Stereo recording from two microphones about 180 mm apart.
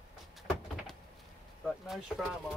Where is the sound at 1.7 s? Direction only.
Centre (ahead or behind).